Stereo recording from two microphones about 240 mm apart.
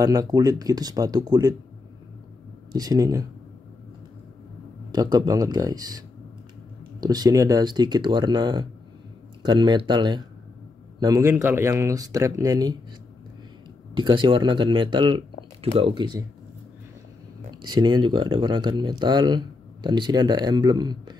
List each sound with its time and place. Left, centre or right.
0.0 s speech: centre
2.7 s speech: centre
4.9 s speech: centre
13.9 s speech: centre
17.6 s speech: centre